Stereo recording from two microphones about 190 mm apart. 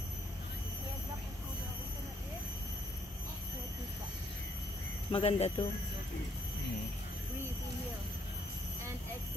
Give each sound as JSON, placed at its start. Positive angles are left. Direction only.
{"t": 5.1, "sound": "speech", "side_deg": 30}